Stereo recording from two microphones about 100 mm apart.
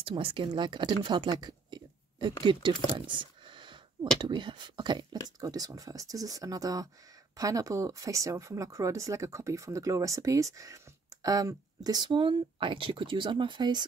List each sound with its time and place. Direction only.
0.0 s speech: 60° right (ahead or behind)
5.1 s speech: 35° right (ahead or behind)